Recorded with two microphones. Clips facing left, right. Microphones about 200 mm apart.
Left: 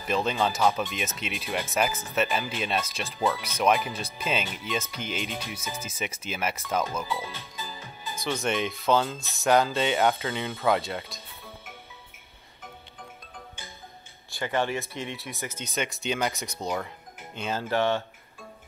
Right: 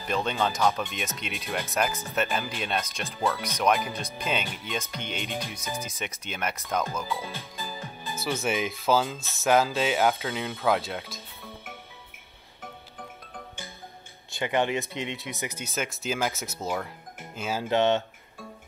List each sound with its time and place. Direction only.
0.0 s speech: centre (ahead or behind)
5.6 s speech: 15° right (ahead or behind)
5.9 s speech: centre (ahead or behind)
7.6 s speech: 10° right (ahead or behind)
14.3 s speech: 20° right (ahead or behind)
15.7 s speech: centre (ahead or behind)
17.6 s speech: 20° right (ahead or behind)